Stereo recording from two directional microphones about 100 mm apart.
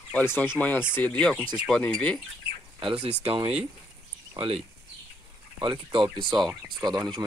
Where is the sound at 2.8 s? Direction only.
65° right (ahead or behind).